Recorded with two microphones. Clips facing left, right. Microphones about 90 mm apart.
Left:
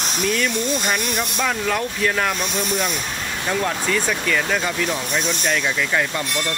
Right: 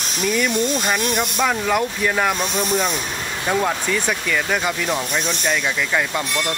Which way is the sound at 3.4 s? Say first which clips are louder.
Right 2 dB; 10° right (ahead or behind).